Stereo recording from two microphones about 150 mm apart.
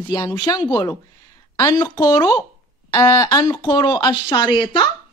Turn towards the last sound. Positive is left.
turn(degrees=30)  # may be behind; listen again after turning